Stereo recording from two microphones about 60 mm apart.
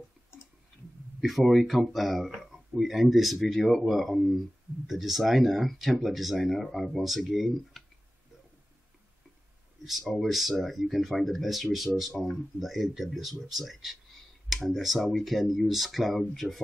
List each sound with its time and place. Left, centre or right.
1.2 s speech: centre
9.8 s speech: centre